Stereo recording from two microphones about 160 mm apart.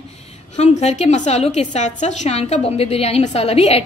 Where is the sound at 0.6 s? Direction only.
45° left (ahead or behind).